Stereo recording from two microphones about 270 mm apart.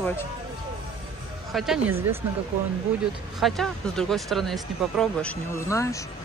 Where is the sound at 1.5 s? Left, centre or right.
Centre.